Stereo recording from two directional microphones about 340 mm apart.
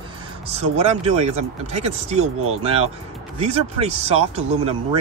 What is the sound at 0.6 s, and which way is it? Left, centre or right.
Speech, centre.